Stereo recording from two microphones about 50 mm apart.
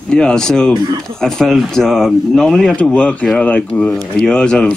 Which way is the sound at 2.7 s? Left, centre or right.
Left.